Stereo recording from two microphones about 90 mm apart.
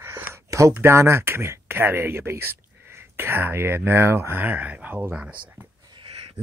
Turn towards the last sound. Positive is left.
turn(degrees=-75)  # may be behind; listen again after turning